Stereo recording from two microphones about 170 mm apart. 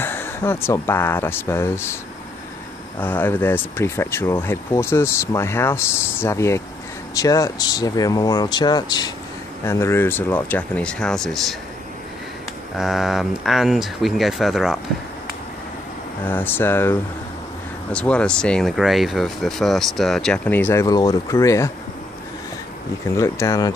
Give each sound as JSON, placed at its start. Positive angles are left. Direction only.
{"t": 0.0, "sound": "speech", "side_deg": 10}
{"t": 3.0, "sound": "speech", "side_deg": 10}
{"t": 12.7, "sound": "speech", "side_deg": 0}
{"t": 16.3, "sound": "speech", "side_deg": 10}
{"t": 23.1, "sound": "speech", "side_deg": 20}